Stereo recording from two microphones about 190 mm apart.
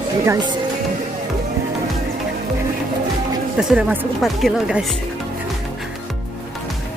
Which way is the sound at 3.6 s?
5° right (ahead or behind).